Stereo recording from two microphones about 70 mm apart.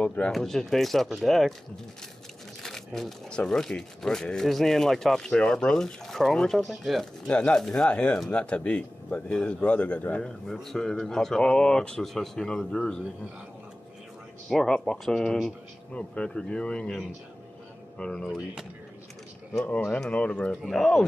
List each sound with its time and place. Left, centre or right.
0.0 s speech: centre
0.3 s speech: centre
2.6 s speech: centre
7.2 s speech: centre
10.2 s speech: centre
14.5 s speech: centre
20.0 s speech: centre